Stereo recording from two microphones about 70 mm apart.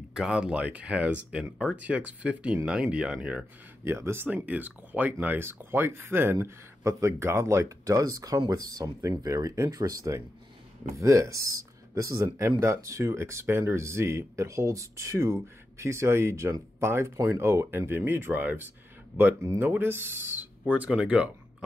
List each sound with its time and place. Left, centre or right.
0.1 s speech: centre
3.8 s speech: right
6.8 s speech: right; by 21.6 s centre